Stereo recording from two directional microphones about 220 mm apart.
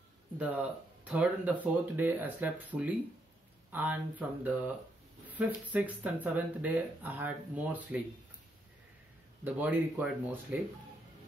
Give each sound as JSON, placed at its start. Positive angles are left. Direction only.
{"t": 0.4, "sound": "speech", "side_deg": -5}
{"t": 9.4, "sound": "speech", "side_deg": -10}